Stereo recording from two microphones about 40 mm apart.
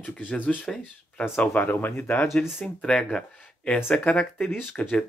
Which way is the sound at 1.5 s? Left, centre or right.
Left.